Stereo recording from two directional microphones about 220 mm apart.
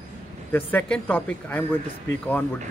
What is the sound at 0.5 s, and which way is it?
A man's voice, 5° left (ahead or behind).